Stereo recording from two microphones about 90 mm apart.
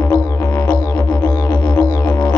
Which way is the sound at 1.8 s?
15° left (ahead or behind).